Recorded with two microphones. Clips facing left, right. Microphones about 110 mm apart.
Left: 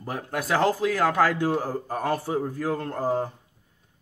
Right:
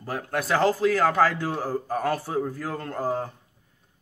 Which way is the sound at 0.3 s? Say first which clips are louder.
Right 1 dB; 10° left (ahead or behind).